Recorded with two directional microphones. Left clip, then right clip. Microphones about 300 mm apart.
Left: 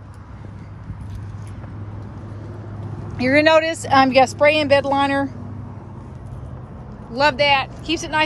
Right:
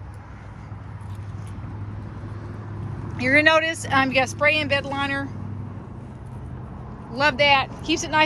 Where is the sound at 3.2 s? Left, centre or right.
Centre.